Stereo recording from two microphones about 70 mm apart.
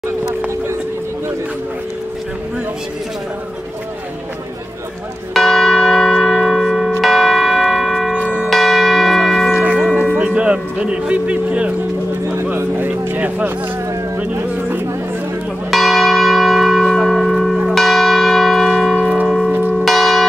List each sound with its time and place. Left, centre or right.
5.3 s church bell: centre
10.1 s music: centre
12.5 s vehicle: right
15.7 s church bell: centre